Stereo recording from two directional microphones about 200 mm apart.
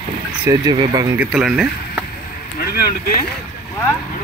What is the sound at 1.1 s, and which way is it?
Speech, 5° right (ahead or behind).